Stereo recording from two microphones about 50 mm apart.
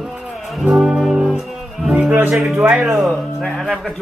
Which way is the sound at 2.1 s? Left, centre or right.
Right.